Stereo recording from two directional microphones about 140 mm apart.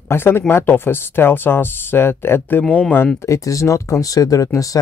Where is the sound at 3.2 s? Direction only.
20° left (ahead or behind).